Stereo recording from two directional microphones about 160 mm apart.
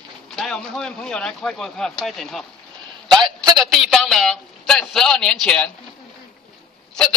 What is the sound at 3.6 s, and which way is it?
A man's voice, centre (ahead or behind).